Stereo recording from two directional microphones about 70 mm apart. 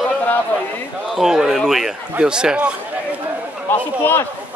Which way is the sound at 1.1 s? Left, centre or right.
Centre.